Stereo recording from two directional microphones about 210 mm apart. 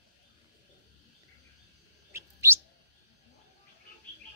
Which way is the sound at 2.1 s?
10° right (ahead or behind).